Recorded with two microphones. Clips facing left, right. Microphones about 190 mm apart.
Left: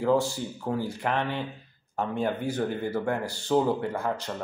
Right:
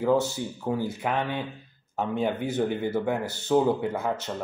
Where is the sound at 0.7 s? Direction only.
Centre (ahead or behind).